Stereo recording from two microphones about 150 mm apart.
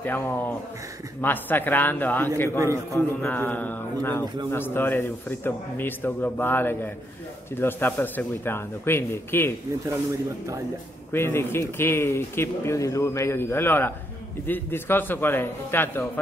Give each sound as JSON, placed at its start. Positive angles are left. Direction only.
{"t": 0.0, "sound": "a man's voice", "side_deg": 15}
{"t": 11.1, "sound": "a man's voice", "side_deg": 15}